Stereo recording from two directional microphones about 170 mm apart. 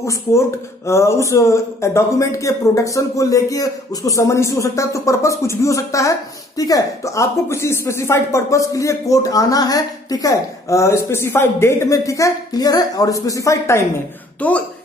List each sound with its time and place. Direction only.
0.0 s speech: 15° left (ahead or behind)